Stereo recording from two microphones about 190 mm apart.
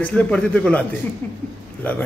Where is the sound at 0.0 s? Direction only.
5° left (ahead or behind).